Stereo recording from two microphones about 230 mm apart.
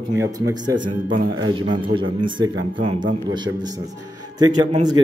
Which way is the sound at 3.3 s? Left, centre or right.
Centre.